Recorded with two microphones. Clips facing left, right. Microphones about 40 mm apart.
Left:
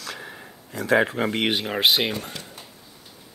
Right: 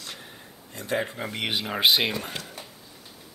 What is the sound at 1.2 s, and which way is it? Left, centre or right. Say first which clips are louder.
Speech: left 9 dB; left.